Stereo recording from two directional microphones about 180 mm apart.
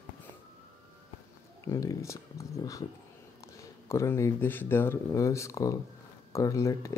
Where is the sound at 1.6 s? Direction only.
20° left (ahead or behind).